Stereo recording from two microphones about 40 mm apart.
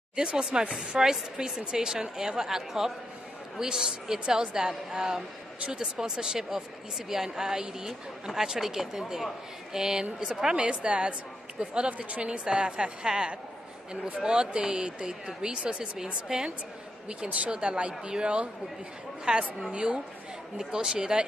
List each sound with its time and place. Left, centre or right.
0.1 s speech: right
10.5 s a woman's voice: right